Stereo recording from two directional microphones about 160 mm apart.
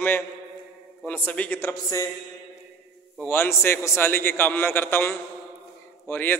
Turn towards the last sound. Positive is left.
turn(degrees=10)  # may be behind; listen again after turning